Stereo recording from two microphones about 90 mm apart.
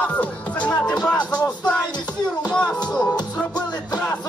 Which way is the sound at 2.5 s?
10° left (ahead or behind).